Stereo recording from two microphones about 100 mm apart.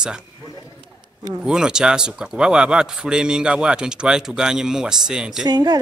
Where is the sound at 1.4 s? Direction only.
5° right (ahead or behind).